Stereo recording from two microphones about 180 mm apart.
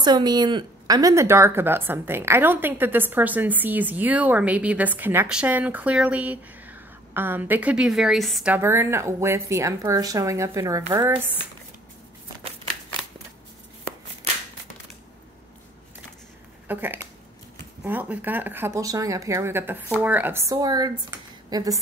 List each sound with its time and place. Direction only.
0.0 s speech: 25° right (ahead or behind); by 8.5 s centre (ahead or behind)
8.5 s speech: 15° right (ahead or behind)
16.6 s speech: 10° right (ahead or behind)